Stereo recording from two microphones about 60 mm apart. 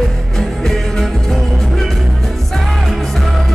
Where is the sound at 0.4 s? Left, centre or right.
Centre.